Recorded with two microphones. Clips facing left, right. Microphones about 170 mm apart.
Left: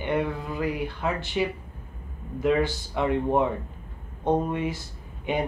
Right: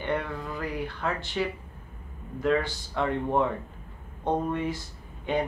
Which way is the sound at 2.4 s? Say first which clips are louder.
Left 3 dB; 15° left (ahead or behind).